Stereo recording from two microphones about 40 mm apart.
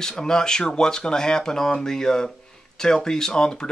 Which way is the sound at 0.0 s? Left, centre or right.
Centre.